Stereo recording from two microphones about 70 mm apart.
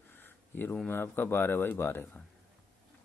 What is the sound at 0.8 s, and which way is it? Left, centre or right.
Speech, left.